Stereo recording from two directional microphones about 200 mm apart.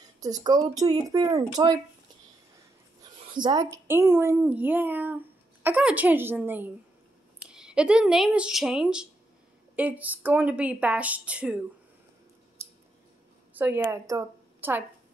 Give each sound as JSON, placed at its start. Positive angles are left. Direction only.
{"t": 0.2, "sound": "speech", "side_deg": -20}
{"t": 3.0, "sound": "a woman's voice", "side_deg": -20}
{"t": 13.6, "sound": "a woman's voice", "side_deg": -10}